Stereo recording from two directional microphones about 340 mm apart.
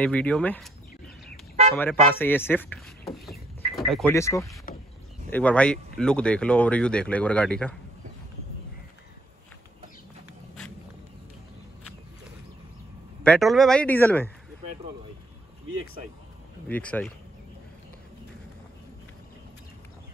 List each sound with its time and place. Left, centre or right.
0.0 s speech: centre
4.7 s vehicle: left
5.3 s speech: centre
13.2 s speech: centre
16.6 s speech: centre